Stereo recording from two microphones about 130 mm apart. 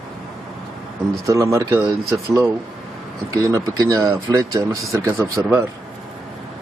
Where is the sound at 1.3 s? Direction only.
25° right (ahead or behind).